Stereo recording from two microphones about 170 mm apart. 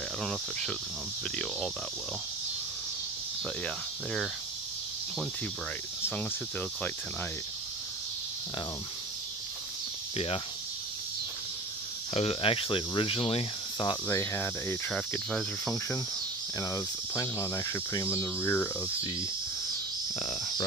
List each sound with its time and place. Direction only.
0.2 s speech: centre (ahead or behind)
3.6 s speech: centre (ahead or behind)
10.1 s speech: 35° left (ahead or behind)
12.1 s speech: 35° left (ahead or behind)
14.0 s speech: 15° left (ahead or behind)
16.5 s speech: 20° left (ahead or behind)
20.2 s speech: 25° left (ahead or behind)